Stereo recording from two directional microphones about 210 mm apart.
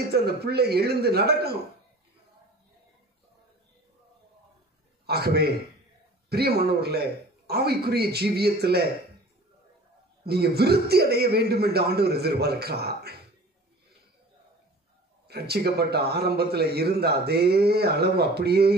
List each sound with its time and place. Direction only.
0.1 s a man's voice: 50° right (ahead or behind)
5.0 s a man's voice: 50° right (ahead or behind)
10.2 s a man's voice: 50° right (ahead or behind)
15.2 s a man's voice: 50° right (ahead or behind)